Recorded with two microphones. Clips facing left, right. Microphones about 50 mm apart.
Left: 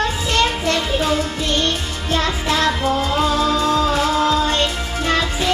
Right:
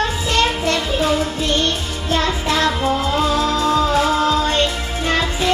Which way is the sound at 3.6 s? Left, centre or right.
Right.